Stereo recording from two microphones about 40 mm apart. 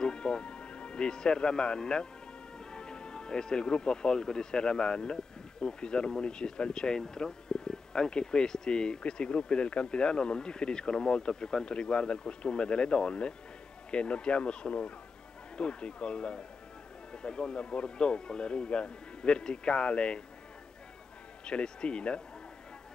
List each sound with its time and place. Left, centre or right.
0.0 s music: left
2.7 s speech: left
21.5 s speech: left